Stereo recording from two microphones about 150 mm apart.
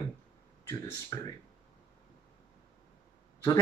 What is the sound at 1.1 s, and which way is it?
Speech, 20° left (ahead or behind).